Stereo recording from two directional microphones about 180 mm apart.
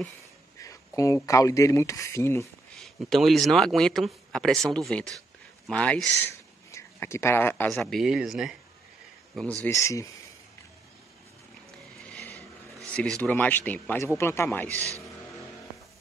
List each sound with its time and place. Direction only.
0.6 s speech: 20° left (ahead or behind)
2.7 s speech: centre (ahead or behind)
6.7 s speech: 15° left (ahead or behind)
7.7 s speech: centre (ahead or behind)
9.7 s speech: 15° left (ahead or behind)
13.2 s speech: 10° left (ahead or behind)
14.8 s speech: 15° right (ahead or behind)